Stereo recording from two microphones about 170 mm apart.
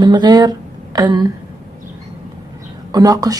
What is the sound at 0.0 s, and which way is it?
Speech, 25° right (ahead or behind).